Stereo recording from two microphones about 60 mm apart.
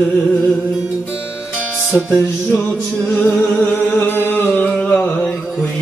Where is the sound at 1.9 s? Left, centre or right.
Left.